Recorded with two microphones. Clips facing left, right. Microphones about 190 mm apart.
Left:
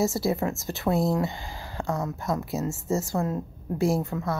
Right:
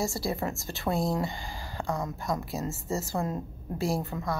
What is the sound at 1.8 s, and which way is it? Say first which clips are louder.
Speech: left 3 dB; centre (ahead or behind).